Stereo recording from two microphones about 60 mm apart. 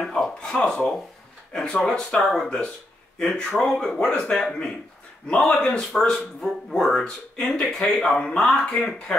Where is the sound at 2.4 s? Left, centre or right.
Centre.